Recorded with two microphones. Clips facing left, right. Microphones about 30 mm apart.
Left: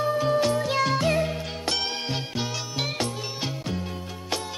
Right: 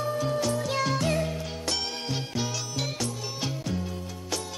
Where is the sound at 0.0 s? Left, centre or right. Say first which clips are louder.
Left 5 dB; left.